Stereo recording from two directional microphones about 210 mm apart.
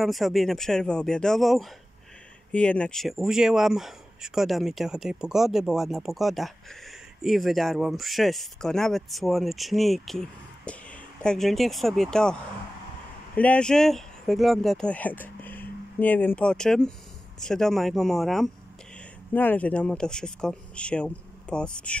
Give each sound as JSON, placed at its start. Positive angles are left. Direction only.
{"t": 0.0, "sound": "speech", "side_deg": 0}